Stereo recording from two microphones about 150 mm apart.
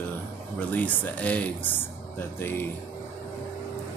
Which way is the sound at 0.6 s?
10° left (ahead or behind).